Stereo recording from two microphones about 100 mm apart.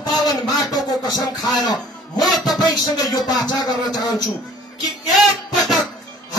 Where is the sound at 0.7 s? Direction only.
40° left (ahead or behind).